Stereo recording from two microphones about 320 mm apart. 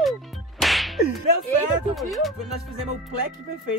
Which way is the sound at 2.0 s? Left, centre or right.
Centre.